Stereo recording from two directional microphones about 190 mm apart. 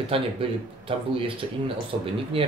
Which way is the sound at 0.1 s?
30° right (ahead or behind).